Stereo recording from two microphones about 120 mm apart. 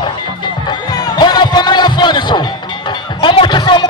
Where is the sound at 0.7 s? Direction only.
40° left (ahead or behind).